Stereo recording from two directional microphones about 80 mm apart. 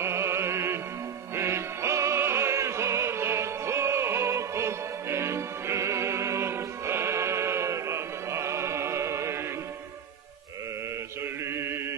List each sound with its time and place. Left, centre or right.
0.0 s music: right
11.4 s mantra: right